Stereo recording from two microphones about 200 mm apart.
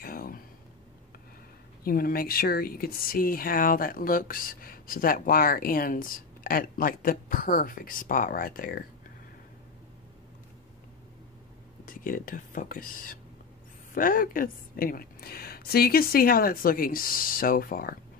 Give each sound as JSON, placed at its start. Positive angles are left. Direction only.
{"t": 0.0, "sound": "a sound", "side_deg": 50}
{"t": 1.9, "sound": "speech", "side_deg": 50}
{"t": 11.8, "sound": "speech", "side_deg": 45}